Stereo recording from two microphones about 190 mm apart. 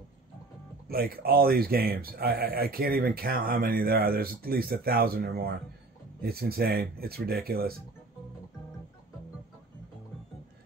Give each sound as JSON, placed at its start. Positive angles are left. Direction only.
{"t": 0.8, "sound": "speech", "side_deg": -50}